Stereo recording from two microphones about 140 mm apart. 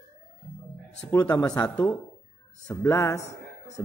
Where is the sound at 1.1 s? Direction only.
20° left (ahead or behind).